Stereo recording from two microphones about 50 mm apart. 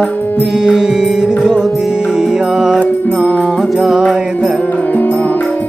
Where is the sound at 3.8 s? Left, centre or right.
Centre.